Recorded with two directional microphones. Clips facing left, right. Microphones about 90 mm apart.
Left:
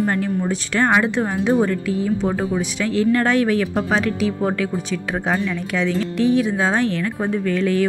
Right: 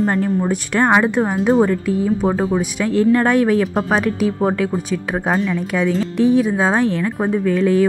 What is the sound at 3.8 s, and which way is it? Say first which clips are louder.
Speech: right 2 dB; 45° right (ahead or behind).